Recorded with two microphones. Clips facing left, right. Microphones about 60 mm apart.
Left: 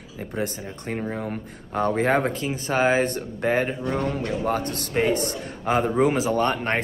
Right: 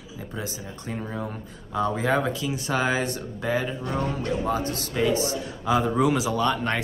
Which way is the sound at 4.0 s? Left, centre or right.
Left.